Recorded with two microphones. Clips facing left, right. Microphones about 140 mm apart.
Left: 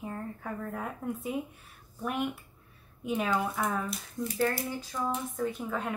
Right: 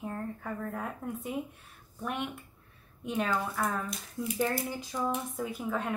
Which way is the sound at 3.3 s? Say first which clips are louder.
Left 2 dB; 20° left (ahead or behind).